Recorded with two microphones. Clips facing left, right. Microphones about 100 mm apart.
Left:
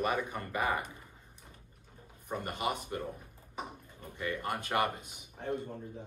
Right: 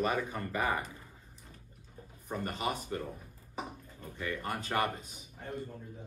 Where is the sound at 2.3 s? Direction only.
15° left (ahead or behind).